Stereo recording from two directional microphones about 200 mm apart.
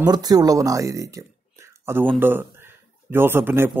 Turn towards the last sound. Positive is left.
turn(degrees=-10)  # may be behind; listen again after turning